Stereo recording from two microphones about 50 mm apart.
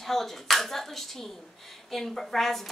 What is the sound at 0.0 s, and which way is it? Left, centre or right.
Speech, centre.